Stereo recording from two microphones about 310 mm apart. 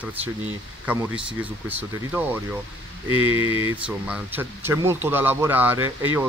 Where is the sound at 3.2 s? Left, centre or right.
Centre.